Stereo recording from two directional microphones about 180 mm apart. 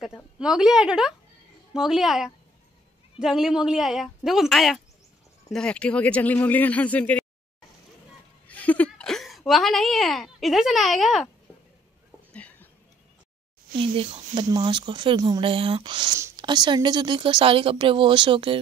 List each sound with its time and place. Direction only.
0.0 s a woman's voice: 5° right (ahead or behind)
8.5 s a woman's voice: 10° left (ahead or behind)
12.3 s a sound: 10° left (ahead or behind)
13.7 s speech: 30° right (ahead or behind)